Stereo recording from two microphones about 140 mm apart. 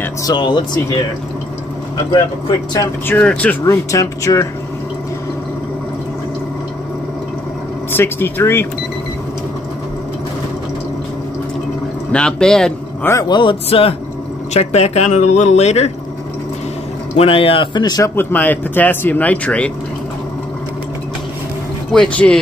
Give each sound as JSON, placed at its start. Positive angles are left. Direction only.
{"t": 0.0, "sound": "speech", "side_deg": 25}
{"t": 3.1, "sound": "speech", "side_deg": 10}
{"t": 3.6, "sound": "speech", "side_deg": 20}
{"t": 7.9, "sound": "speech", "side_deg": 15}
{"t": 12.1, "sound": "speech", "side_deg": 5}
{"t": 13.0, "sound": "speech", "side_deg": 20}
{"t": 13.3, "sound": "speech", "side_deg": 35}
{"t": 17.2, "sound": "speech", "side_deg": 40}
{"t": 18.1, "sound": "speech", "side_deg": 15}
{"t": 21.9, "sound": "speech", "side_deg": 5}